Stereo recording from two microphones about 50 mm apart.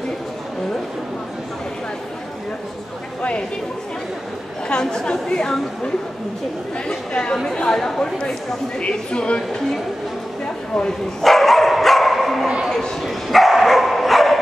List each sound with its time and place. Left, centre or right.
3.2 s a sound: left
4.6 s a woman's voice: centre
6.9 s a woman's voice: centre
11.2 s dog: centre
12.6 s bow-wow: centre